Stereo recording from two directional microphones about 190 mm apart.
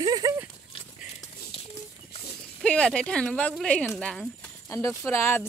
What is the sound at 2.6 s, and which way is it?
Speech, 5° left (ahead or behind).